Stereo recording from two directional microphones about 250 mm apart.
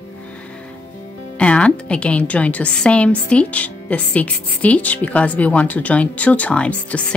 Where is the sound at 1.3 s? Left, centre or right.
Centre.